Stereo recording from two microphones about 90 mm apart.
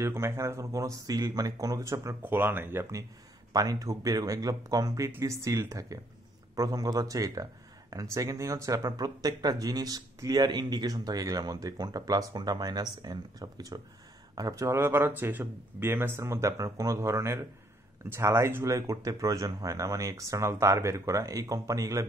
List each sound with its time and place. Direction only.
0.0 s speech: 30° right (ahead or behind)
2.2 s speech: 20° right (ahead or behind)
3.5 s speech: 45° right (ahead or behind)